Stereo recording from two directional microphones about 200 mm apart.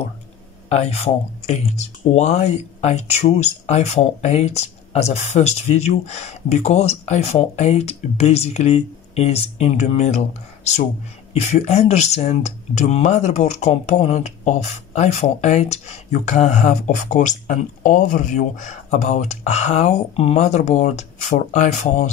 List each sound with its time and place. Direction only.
0.7 s speech: 35° left (ahead or behind)